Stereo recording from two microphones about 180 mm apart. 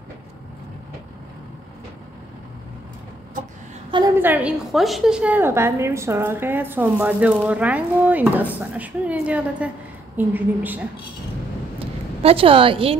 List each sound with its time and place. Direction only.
3.9 s a woman's voice: 15° right (ahead or behind)
11.8 s a woman's voice: 30° right (ahead or behind)